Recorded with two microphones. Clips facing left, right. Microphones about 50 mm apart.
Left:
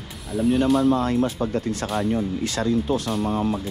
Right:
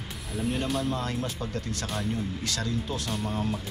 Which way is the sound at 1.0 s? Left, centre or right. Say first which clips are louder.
Left 10 dB; left.